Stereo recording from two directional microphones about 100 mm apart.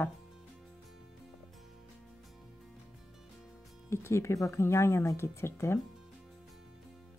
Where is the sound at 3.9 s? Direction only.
25° left (ahead or behind).